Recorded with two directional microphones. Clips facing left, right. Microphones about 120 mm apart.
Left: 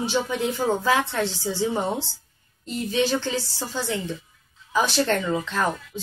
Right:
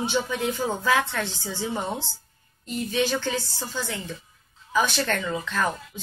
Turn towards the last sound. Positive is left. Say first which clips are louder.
# left 2 dB
turn(degrees=30)  # may be behind; listen again after turning